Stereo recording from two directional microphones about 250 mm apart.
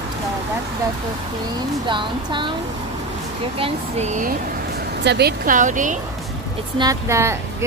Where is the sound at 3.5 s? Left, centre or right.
Right.